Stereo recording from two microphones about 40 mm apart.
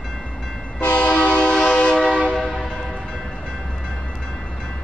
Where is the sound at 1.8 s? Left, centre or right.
Centre.